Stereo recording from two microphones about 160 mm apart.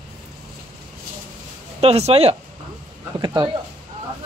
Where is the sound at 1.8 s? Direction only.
40° right (ahead or behind).